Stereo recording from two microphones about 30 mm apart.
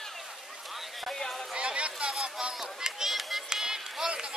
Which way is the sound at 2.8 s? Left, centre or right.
Right.